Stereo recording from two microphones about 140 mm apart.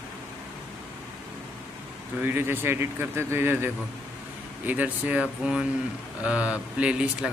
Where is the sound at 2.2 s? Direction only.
15° right (ahead or behind).